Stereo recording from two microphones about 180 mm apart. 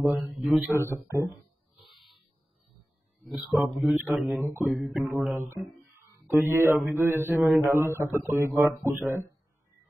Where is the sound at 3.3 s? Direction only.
Centre (ahead or behind).